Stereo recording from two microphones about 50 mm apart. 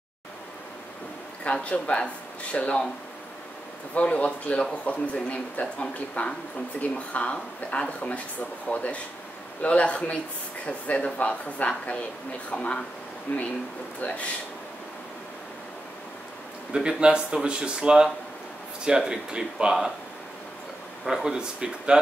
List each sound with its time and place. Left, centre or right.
1.4 s speech: left
3.9 s speech: left
14.0 s speech: left
16.7 s speech: centre
21.0 s speech: centre